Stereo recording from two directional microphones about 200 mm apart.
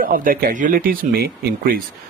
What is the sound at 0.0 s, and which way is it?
Speech, 45° right (ahead or behind).